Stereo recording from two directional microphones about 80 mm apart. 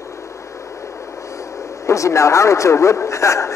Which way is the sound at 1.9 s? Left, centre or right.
Left.